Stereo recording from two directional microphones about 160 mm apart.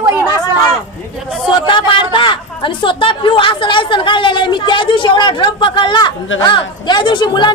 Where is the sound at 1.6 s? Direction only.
30° left (ahead or behind).